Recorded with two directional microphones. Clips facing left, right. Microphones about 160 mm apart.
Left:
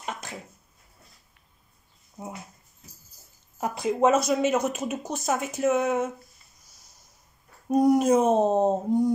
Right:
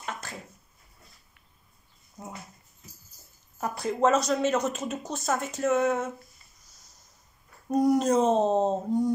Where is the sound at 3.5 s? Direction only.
20° left (ahead or behind).